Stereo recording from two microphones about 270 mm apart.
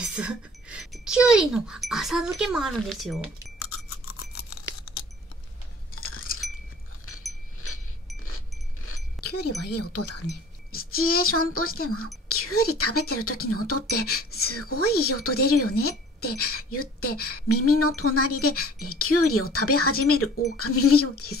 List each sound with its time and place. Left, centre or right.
0.1 s a child's voice: centre
4.4 s tearing: left
5.9 s a sound: left
9.2 s a woman's voice: left
10.2 s a sound: left
11.2 s a woman's voice: left
13.8 s speech: left
14.4 s a woman's voice: left